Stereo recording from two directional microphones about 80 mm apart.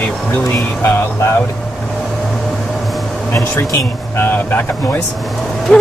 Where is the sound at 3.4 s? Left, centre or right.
Left.